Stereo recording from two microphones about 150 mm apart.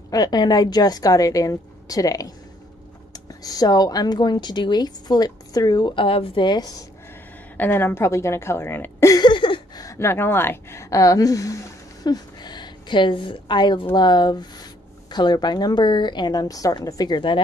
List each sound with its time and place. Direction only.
0.1 s speech: 25° left (ahead or behind)
7.5 s a woman's voice: 15° left (ahead or behind)
9.1 s a sound: 30° left (ahead or behind)
9.8 s a woman's voice: 15° left (ahead or behind)